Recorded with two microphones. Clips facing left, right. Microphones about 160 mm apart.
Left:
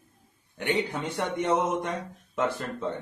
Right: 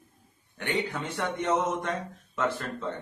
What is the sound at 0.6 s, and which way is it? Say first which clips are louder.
A man's voice: left 2 dB; 20° left (ahead or behind).